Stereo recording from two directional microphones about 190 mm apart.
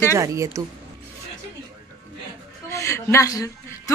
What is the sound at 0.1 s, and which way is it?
Speech, 15° right (ahead or behind).